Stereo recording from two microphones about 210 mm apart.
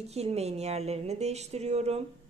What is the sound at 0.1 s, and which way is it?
Speech, 30° right (ahead or behind).